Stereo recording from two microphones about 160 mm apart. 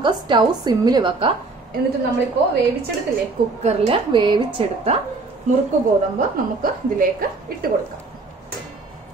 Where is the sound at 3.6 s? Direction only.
40° right (ahead or behind).